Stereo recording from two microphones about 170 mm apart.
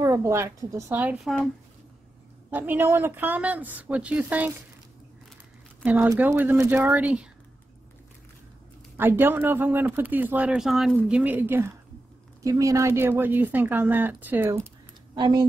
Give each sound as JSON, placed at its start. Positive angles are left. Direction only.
{"t": 0.0, "sound": "speech", "side_deg": -15}
{"t": 2.5, "sound": "speech", "side_deg": -10}
{"t": 5.9, "sound": "speech", "side_deg": -10}
{"t": 8.9, "sound": "speech", "side_deg": -10}
{"t": 15.1, "sound": "a woman's voice", "side_deg": -25}